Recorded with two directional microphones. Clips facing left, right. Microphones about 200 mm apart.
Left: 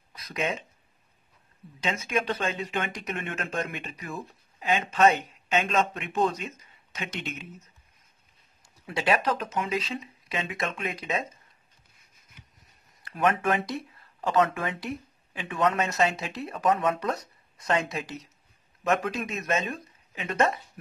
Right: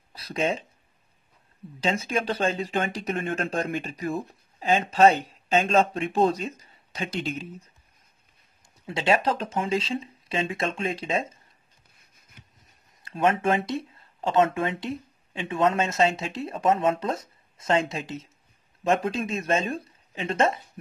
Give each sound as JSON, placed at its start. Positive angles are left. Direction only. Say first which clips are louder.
{"t": 0.1, "sound": "speech", "louder": "right 4 dB", "side_deg": -30}
{"t": 1.8, "sound": "speech", "louder": "right 3 dB", "side_deg": -30}
{"t": 8.8, "sound": "speech", "louder": "right 2 dB", "side_deg": -25}
{"t": 13.0, "sound": "speech", "louder": "right 2 dB", "side_deg": -25}